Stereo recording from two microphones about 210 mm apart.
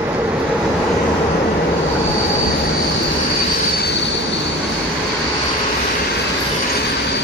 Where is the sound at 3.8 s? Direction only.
55° left (ahead or behind).